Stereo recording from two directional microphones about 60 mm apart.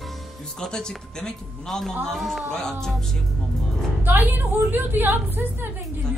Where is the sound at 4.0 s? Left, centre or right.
Right.